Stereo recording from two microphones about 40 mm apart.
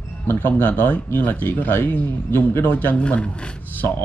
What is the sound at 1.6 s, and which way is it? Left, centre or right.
Speech, left.